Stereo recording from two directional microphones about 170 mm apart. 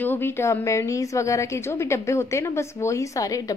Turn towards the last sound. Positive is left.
turn(degrees=20)  # may be behind; listen again after turning